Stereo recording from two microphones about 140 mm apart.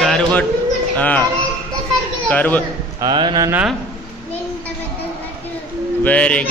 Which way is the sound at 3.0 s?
30° right (ahead or behind).